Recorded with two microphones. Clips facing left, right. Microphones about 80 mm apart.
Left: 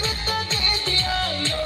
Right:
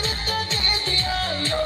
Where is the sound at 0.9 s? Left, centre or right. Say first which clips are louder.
Left 1 dB; right.